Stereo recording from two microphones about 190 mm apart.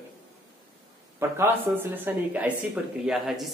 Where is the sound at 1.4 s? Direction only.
10° right (ahead or behind).